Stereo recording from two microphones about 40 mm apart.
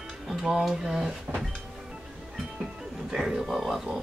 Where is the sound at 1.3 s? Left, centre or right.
Right.